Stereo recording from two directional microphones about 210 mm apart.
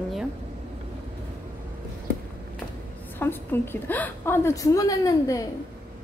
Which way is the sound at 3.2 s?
10° left (ahead or behind).